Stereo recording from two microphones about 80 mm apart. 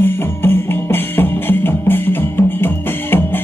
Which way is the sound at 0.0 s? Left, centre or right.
Left.